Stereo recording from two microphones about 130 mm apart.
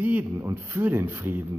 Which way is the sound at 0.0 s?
15° right (ahead or behind).